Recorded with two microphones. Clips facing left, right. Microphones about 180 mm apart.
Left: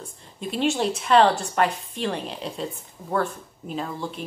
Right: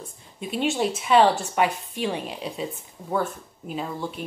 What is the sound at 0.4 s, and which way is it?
A woman's voice, centre (ahead or behind).